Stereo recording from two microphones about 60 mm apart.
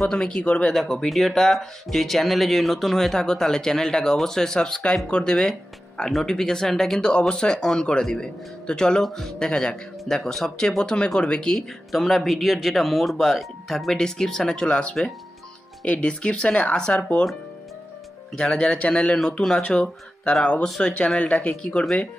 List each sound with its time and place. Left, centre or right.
0.0 s speech: centre
11.5 s speech: centre
18.3 s speech: centre